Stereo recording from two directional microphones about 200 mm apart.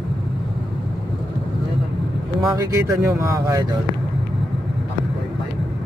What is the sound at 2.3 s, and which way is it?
Speech, 20° right (ahead or behind).